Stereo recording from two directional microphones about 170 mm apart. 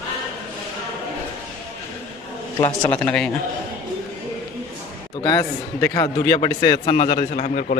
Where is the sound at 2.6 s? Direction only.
25° left (ahead or behind).